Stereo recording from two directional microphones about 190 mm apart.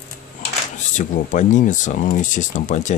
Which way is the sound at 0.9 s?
40° left (ahead or behind).